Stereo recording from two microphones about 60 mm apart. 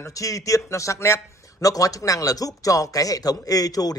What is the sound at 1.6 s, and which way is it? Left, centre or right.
Speech, left.